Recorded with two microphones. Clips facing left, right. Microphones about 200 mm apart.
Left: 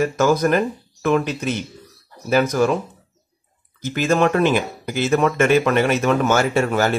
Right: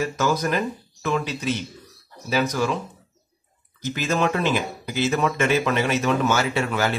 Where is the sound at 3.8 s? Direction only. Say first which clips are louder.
Left 5 dB; 55° left (ahead or behind).